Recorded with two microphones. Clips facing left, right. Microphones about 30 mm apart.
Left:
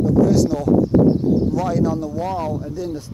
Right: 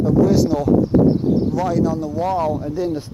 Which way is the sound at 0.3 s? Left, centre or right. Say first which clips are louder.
Right 1 dB; centre.